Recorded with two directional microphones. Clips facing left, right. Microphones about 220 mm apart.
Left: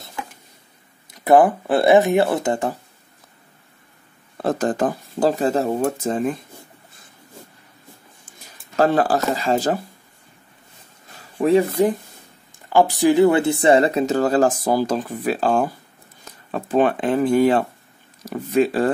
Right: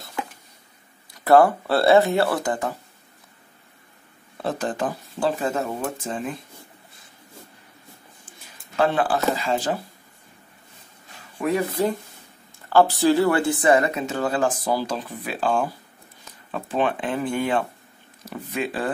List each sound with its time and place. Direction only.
1.1 s speech: 20° left (ahead or behind)
4.4 s speech: 45° left (ahead or behind)
8.3 s speech: 40° left (ahead or behind)
11.3 s speech: 30° left (ahead or behind)